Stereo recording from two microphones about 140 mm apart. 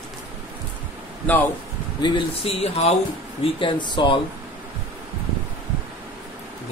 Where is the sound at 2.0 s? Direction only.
40° left (ahead or behind).